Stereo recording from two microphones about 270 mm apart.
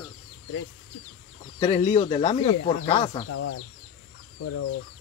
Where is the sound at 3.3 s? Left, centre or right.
Left.